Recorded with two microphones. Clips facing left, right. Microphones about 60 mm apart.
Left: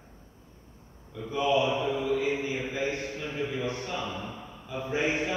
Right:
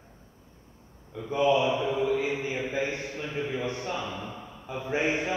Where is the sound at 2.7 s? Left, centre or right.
Right.